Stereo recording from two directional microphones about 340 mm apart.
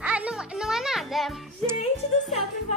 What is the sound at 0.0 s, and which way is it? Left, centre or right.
Music, centre.